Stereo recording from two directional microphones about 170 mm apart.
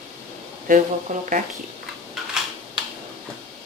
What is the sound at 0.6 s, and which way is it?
Speech, 45° right (ahead or behind).